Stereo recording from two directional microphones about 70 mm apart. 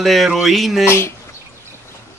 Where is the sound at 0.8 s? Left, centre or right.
Left.